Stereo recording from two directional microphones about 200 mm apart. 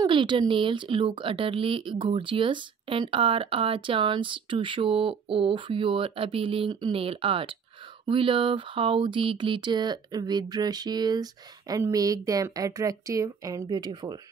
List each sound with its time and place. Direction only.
0.0 s a woman's voice: 25° right (ahead or behind)